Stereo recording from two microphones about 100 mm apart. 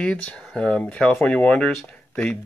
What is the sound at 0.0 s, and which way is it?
Speech, 10° left (ahead or behind).